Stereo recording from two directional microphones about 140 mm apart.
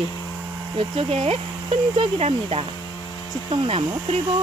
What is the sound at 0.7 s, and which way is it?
Speech, 40° right (ahead or behind).